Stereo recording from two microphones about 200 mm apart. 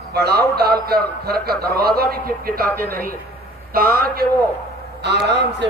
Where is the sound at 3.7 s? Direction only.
45° right (ahead or behind).